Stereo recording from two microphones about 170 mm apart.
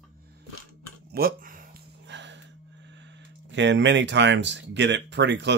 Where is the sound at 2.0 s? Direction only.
90° right.